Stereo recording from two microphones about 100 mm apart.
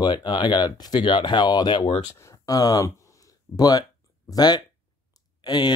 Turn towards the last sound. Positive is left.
turn(degrees=45)  # may be behind; listen again after turning